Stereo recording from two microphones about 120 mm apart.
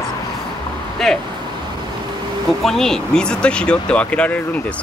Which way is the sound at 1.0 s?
5° left (ahead or behind).